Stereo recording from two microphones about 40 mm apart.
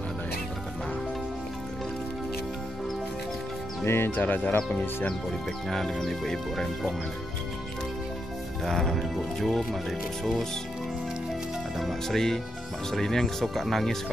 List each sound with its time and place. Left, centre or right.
3.8 s speech: left
4.2 s speech: left
5.7 s speech: centre
8.6 s speech: centre
11.8 s speech: centre